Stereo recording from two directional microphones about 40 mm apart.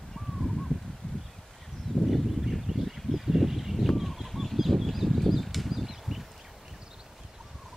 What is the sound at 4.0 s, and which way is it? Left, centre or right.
Fowl, centre.